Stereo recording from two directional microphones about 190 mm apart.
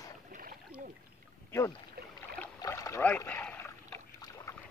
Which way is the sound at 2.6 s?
15° left (ahead or behind).